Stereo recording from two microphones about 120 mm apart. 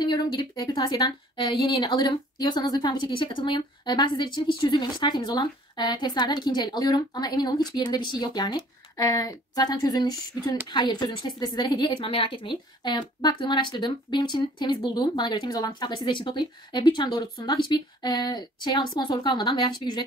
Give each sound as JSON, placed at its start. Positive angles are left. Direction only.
{"t": 0.0, "sound": "a woman's voice", "side_deg": 40}